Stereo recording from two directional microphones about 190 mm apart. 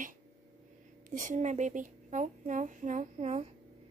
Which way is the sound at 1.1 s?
40° right (ahead or behind).